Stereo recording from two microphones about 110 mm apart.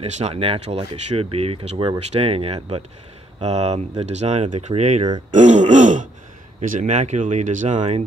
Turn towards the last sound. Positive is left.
turn(degrees=-90)